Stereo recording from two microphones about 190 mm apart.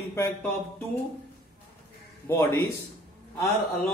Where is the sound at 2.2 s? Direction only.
15° left (ahead or behind).